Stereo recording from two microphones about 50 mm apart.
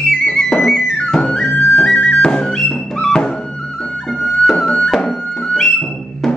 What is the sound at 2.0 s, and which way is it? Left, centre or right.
Music, left.